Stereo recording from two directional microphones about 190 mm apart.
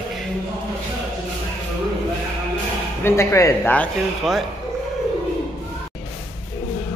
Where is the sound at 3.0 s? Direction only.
15° left (ahead or behind).